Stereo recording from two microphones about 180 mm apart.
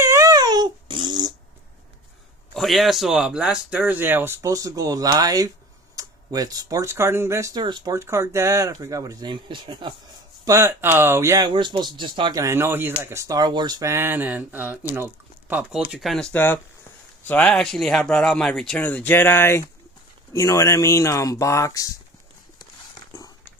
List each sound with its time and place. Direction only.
0.0 s a sound: 15° right (ahead or behind)
2.5 s speech: centre (ahead or behind); by 9.9 s 25° right (ahead or behind)
10.4 s speech: 15° right (ahead or behind)
11.5 s speech: 25° right (ahead or behind); by 21.9 s 20° left (ahead or behind)